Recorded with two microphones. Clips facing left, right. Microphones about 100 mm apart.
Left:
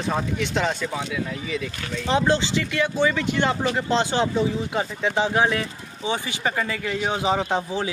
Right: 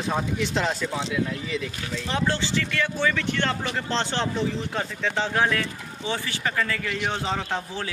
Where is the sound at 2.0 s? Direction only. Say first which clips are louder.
Left 6 dB; 20° left (ahead or behind).